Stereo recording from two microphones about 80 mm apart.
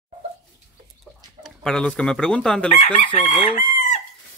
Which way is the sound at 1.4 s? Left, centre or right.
Centre.